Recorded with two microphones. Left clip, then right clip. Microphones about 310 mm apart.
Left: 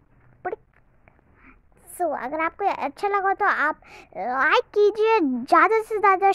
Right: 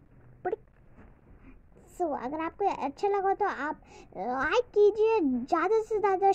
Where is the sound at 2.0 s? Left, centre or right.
Left.